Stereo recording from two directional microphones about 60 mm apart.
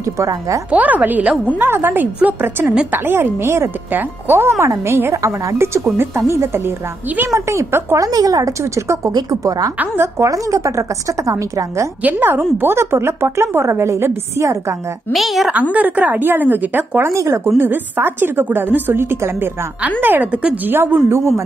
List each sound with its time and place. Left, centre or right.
0.0 s a woman's voice: right
0.7 s a woman's voice: right
9.1 s a woman's voice: right
9.9 s a woman's voice: right
12.0 s a woman's voice: right
15.1 s a woman's voice: centre
15.7 s a woman's voice: right
17.0 s a woman's voice: right
17.6 s a woman's voice: right